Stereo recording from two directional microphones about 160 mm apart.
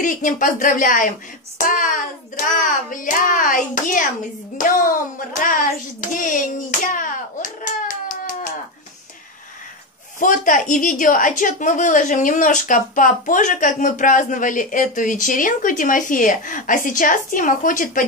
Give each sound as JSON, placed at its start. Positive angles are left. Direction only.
{"t": 0.0, "sound": "a woman's voice", "side_deg": 55}
{"t": 4.6, "sound": "hands", "side_deg": 55}
{"t": 10.1, "sound": "a woman's voice", "side_deg": 55}